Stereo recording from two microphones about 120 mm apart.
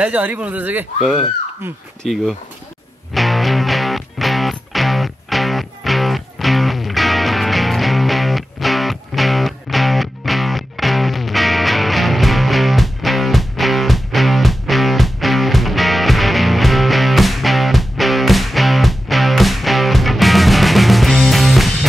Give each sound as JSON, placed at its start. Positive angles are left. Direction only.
{"t": 0.0, "sound": "speech", "side_deg": -10}
{"t": 2.0, "sound": "speech", "side_deg": 0}
{"t": 3.2, "sound": "music", "side_deg": 0}